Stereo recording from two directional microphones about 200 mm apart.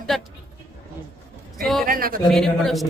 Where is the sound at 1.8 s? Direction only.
45° right (ahead or behind).